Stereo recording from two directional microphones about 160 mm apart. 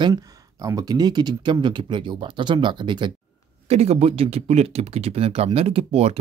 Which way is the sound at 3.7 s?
40° right (ahead or behind).